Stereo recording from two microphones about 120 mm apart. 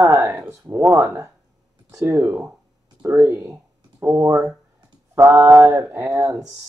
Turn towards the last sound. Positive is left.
turn(degrees=-20)  # may be behind; listen again after turning